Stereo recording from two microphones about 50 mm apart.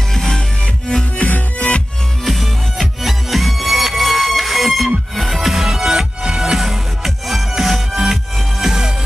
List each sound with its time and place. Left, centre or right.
0.1 s music: centre
1.2 s music: left
2.2 s music: centre